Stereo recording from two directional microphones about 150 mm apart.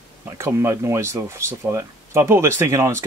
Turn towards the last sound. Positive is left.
turn(degrees=-15)  # may be behind; listen again after turning